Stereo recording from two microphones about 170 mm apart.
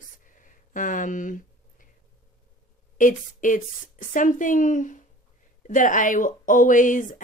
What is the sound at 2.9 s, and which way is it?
Speech, 50° left (ahead or behind).